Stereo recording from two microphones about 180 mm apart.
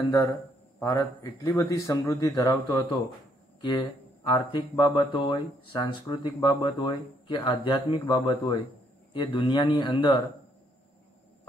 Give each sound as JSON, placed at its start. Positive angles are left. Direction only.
{"t": 0.0, "sound": "speech", "side_deg": 15}
{"t": 4.3, "sound": "speech", "side_deg": 25}